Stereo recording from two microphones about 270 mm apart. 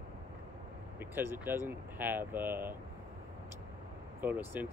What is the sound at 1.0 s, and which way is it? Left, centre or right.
Speech, centre.